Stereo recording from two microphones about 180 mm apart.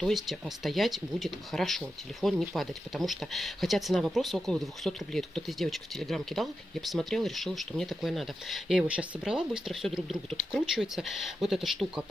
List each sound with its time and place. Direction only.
0.0 s speech: centre (ahead or behind)